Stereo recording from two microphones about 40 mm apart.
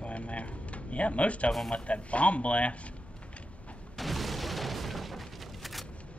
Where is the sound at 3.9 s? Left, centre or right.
Centre.